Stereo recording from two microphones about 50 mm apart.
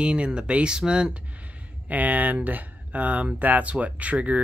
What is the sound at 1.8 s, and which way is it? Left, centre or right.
Speech, right.